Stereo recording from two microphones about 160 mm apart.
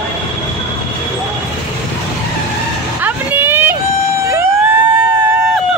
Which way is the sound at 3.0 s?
10° right (ahead or behind).